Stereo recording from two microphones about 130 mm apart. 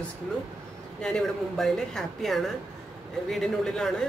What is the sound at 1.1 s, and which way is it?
Speech, 5° left (ahead or behind).